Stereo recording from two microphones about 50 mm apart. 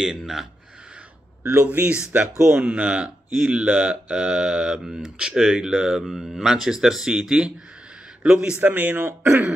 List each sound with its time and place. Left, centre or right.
1.4 s speech: right
2.5 s speech: right
8.6 s speech: right
9.0 s speech: right